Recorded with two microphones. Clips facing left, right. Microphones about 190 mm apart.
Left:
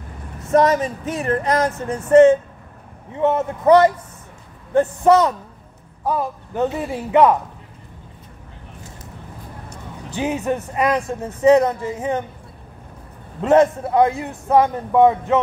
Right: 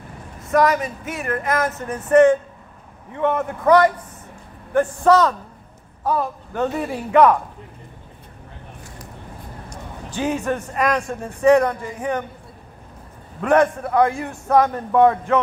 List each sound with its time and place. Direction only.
0.5 s a man's voice: 25° left (ahead or behind)
10.1 s speech: 20° left (ahead or behind)
13.4 s speech: 25° left (ahead or behind)